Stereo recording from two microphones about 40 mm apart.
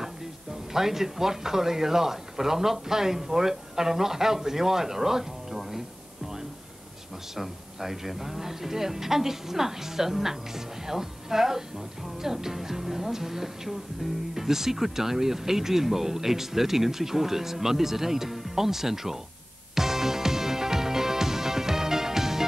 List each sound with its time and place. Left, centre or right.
0.7 s speech: centre
7.3 s speech: centre
19.7 s music: centre